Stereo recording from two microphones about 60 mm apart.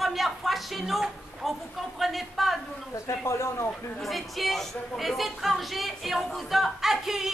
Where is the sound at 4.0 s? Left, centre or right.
Centre.